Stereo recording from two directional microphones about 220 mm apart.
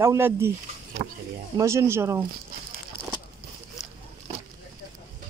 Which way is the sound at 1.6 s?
15° right (ahead or behind).